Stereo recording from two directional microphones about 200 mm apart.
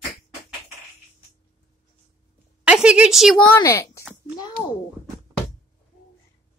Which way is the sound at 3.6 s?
15° left (ahead or behind).